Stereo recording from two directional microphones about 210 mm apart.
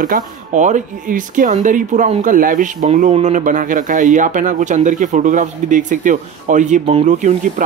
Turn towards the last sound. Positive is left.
turn(degrees=-35)  # may be behind; listen again after turning